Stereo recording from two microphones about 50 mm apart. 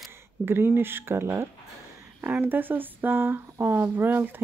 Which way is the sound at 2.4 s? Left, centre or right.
Right.